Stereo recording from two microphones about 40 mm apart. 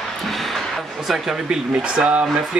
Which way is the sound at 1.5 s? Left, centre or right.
Right.